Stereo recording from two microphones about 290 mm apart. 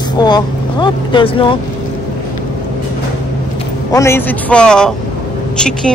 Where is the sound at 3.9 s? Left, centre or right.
Centre.